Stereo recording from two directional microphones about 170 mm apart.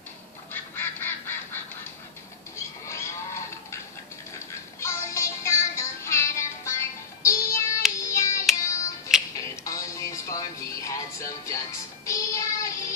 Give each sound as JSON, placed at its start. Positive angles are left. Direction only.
{"t": 0.5, "sound": "duck", "side_deg": 10}
{"t": 2.5, "sound": "livestock", "side_deg": 15}
{"t": 4.7, "sound": "music", "side_deg": 15}
{"t": 7.8, "sound": "hands", "side_deg": -5}
{"t": 8.5, "sound": "music", "side_deg": 20}
{"t": 12.1, "sound": "child singing", "side_deg": 20}